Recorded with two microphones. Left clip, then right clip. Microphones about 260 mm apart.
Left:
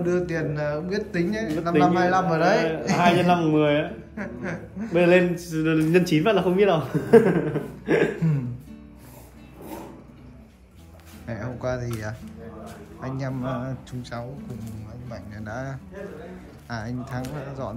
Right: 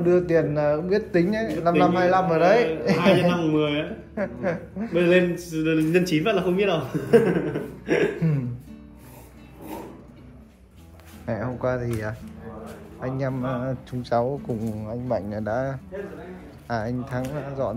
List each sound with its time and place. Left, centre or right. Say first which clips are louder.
0.0 s a man's voice: right 5 dB; centre
3.5 s mantra: left 3 dB; left
4.1 s a man's voice: right 6 dB; centre
5.3 s mantra: even; left
5.9 s speech: left 1 dB; left
7.1 s a sound: left 2 dB; left
8.2 s a man's voice: right 1 dB; centre
11.2 s a man's voice: right 3 dB; centre